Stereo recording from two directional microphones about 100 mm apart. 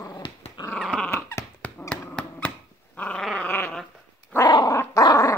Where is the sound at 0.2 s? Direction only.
55° left (ahead or behind).